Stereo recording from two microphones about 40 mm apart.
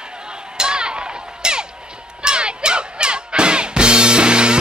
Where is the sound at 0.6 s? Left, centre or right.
Right.